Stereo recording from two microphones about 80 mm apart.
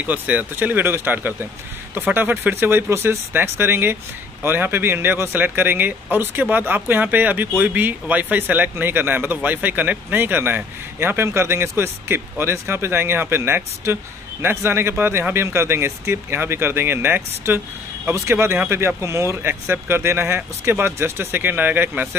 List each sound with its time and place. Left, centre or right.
0.0 s speech: centre